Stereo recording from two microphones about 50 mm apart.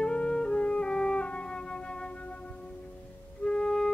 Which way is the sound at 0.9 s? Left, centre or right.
Centre.